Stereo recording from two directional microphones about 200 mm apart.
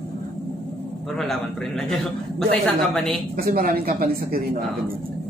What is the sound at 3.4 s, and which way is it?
Speech, 45° right (ahead or behind).